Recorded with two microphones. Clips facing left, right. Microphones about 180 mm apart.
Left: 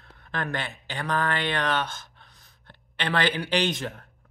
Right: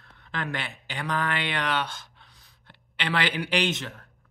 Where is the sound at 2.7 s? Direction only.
45° left (ahead or behind).